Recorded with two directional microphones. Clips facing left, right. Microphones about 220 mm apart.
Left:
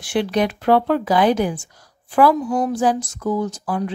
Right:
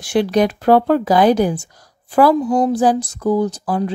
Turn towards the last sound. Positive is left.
turn(degrees=-35)  # may be behind; listen again after turning